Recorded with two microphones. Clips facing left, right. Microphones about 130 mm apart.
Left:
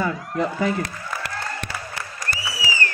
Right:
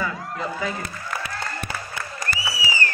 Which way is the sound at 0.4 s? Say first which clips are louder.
Left 6 dB; 55° left (ahead or behind).